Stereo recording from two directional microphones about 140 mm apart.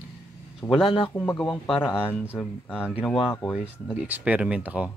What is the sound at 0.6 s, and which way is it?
Speech, centre (ahead or behind).